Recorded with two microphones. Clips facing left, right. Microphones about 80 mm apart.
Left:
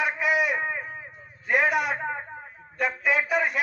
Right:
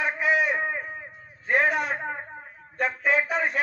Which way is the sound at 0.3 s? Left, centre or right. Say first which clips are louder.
Right 3 dB; centre.